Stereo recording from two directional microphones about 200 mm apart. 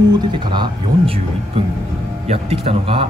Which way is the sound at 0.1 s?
20° right (ahead or behind).